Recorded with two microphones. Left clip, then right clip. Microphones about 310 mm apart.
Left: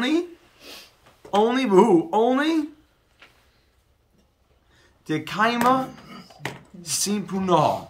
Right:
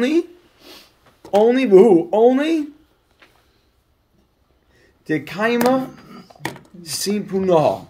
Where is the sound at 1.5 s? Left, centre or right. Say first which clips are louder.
Right 5 dB; centre.